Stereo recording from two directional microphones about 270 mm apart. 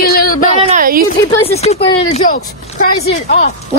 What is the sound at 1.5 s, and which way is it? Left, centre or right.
Speech, left.